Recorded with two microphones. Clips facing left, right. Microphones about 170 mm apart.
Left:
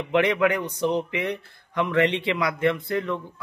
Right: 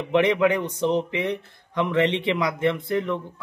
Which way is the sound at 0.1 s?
20° right (ahead or behind).